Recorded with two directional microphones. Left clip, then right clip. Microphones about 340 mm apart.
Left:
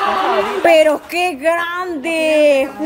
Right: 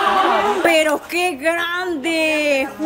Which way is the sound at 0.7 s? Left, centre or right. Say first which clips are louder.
Left 10 dB; centre.